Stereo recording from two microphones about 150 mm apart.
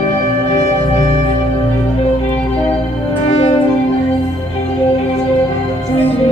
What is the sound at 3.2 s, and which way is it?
Music, 45° left (ahead or behind).